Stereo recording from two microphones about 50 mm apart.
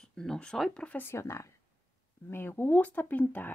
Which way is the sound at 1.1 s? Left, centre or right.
Left.